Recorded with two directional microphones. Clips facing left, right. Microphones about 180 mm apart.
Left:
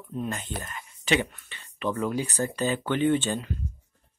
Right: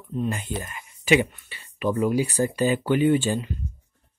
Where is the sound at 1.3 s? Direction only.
10° right (ahead or behind).